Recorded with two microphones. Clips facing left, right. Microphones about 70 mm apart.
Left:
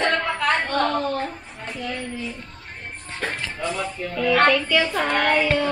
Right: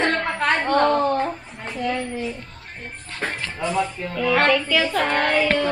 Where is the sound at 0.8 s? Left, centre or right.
Centre.